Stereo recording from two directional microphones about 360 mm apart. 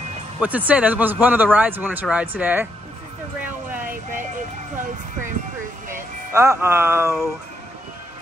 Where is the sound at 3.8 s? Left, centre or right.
Right.